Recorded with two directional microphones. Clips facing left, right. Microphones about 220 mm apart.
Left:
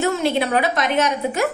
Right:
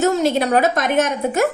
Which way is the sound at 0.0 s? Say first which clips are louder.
Right 3 dB; 45° right (ahead or behind).